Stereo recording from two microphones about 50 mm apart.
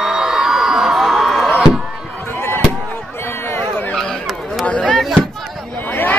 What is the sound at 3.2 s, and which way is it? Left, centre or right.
Run, left.